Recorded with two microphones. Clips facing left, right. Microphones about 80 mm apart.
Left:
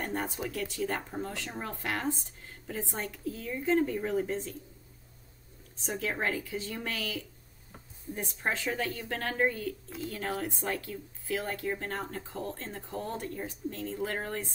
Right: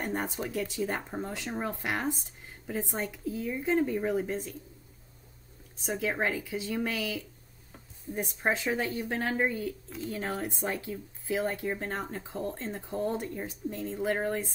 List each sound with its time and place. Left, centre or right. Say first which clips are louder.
0.0 s a woman's voice: right 1 dB; centre
5.9 s a woman's voice: right 2 dB; centre